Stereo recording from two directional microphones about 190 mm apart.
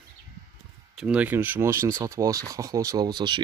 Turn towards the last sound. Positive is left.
turn(degrees=-25)  # may be behind; listen again after turning